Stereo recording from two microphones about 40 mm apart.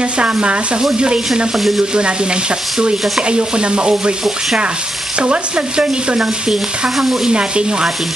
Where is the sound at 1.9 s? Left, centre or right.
Right.